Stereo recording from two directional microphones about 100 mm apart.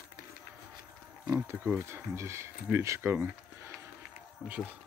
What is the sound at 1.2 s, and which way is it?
Speech, 30° right (ahead or behind).